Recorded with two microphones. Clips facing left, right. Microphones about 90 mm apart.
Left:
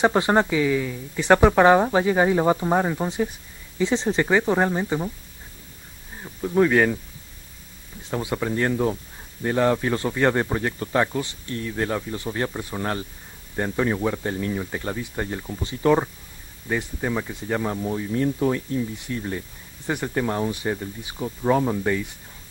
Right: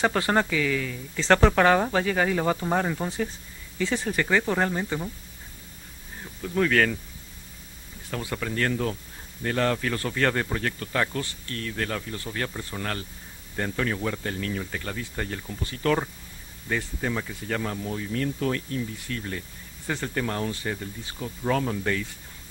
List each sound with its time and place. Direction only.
0.0 s speech: 20° left (ahead or behind)
6.2 s speech: 20° left (ahead or behind)
8.0 s speech: 20° left (ahead or behind)